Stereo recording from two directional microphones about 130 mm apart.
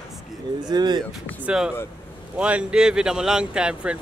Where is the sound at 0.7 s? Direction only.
35° right (ahead or behind).